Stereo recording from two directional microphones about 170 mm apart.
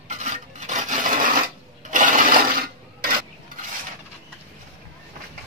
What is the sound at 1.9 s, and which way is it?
Toilet flush, 50° right (ahead or behind).